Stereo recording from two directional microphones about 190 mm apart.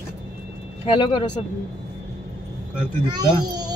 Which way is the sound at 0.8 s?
25° left (ahead or behind).